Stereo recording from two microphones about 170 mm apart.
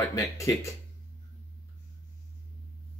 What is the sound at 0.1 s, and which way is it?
Speech, 20° left (ahead or behind).